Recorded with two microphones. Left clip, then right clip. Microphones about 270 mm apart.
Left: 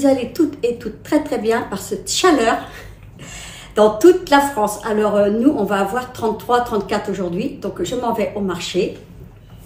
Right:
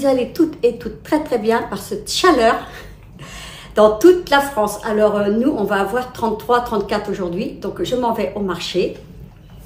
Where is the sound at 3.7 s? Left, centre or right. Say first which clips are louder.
Right 1 dB; centre.